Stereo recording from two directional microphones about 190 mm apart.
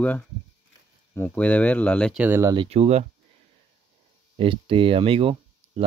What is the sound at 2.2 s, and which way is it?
Speech, 15° right (ahead or behind).